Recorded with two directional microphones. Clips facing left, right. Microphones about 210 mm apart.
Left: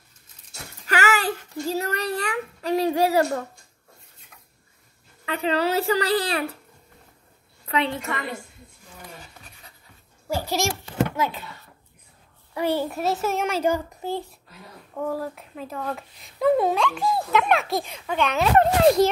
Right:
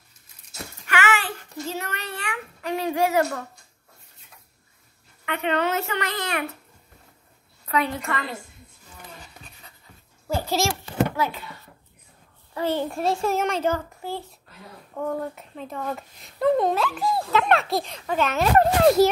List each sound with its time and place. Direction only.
0.8 s a sound: 40° left (ahead or behind)
5.2 s a child's voice: 35° left (ahead or behind)
7.6 s a woman's voice: 30° left (ahead or behind)
10.2 s a child's voice: 15° left (ahead or behind)
12.5 s a child's voice: 10° left (ahead or behind)
15.0 s speech: 5° left (ahead or behind)